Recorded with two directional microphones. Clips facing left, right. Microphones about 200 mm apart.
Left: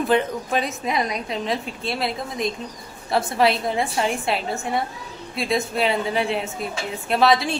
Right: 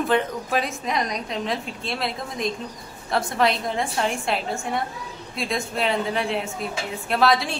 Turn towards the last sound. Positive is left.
turn(degrees=0)  # may be behind; listen again after turning